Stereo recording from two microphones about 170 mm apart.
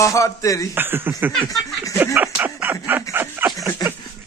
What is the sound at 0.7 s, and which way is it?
Speech, 10° right (ahead or behind).